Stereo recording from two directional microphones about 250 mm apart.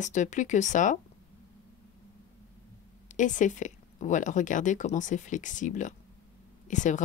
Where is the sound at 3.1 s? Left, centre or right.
Left.